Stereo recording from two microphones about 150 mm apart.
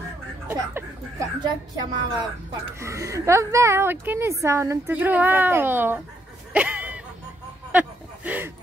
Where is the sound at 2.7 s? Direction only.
20° right (ahead or behind).